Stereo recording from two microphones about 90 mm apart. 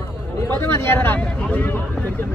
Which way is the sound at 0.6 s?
30° left (ahead or behind).